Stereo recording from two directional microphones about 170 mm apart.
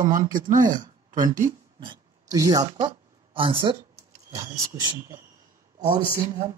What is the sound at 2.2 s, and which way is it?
Speech, 20° right (ahead or behind).